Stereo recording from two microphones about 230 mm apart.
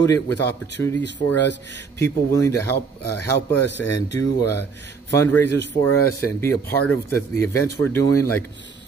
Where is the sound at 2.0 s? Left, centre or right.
Centre.